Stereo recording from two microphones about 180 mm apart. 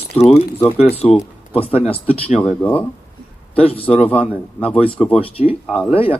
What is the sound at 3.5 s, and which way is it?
Speech, 30° left (ahead or behind).